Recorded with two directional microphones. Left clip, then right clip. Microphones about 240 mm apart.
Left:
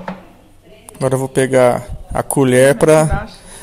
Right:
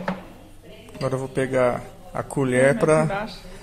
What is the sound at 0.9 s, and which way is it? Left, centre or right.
Speech, left.